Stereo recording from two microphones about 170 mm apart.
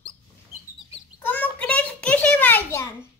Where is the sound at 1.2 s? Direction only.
10° left (ahead or behind).